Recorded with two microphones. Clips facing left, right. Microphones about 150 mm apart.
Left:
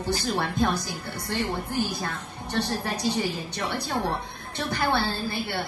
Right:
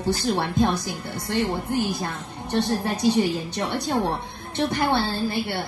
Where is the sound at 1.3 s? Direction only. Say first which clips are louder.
Right 4 dB; 20° right (ahead or behind).